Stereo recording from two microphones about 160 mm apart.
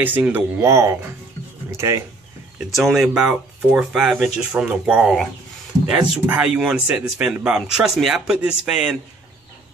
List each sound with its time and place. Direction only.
0.0 s speech: 10° right (ahead or behind)
2.6 s speech: centre (ahead or behind)